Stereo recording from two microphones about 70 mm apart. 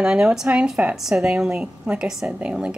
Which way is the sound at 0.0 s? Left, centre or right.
Centre.